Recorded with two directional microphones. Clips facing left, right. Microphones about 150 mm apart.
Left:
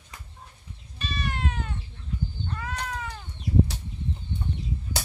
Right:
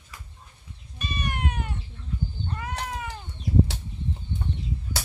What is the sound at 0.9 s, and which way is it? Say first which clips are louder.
Cat: right 1 dB; 15° right (ahead or behind).